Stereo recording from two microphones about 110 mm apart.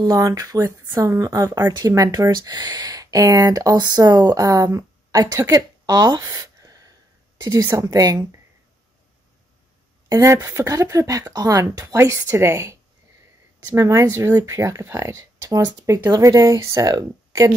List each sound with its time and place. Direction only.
0.0 s a woman's voice: 35° right (ahead or behind)
10.0 s speech: 30° right (ahead or behind)